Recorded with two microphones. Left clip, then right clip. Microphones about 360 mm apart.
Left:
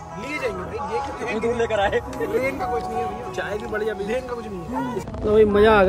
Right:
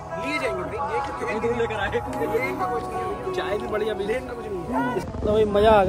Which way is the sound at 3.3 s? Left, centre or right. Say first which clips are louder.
Right 1 dB; centre.